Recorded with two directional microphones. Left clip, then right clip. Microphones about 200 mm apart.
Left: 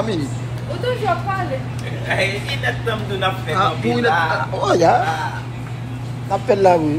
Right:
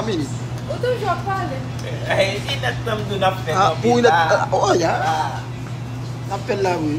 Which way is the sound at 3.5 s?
20° right (ahead or behind).